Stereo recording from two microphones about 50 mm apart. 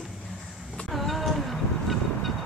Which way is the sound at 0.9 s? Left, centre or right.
Centre.